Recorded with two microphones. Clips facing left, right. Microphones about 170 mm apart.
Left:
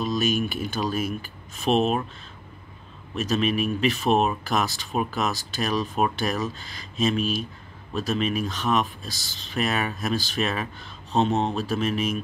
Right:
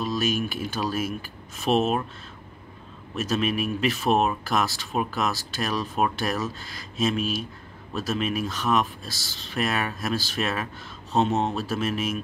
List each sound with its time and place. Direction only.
0.0 s speech: centre (ahead or behind)
3.2 s speech: 5° right (ahead or behind)